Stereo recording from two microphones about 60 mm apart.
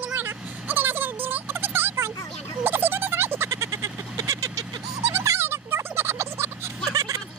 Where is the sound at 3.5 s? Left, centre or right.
Right.